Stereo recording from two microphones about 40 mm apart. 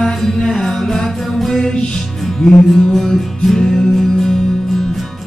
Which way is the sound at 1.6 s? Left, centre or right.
Left.